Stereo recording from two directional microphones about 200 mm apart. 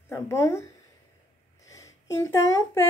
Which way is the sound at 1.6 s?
15° left (ahead or behind).